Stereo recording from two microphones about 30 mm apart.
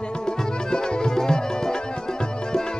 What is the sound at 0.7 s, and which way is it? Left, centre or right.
Music, left.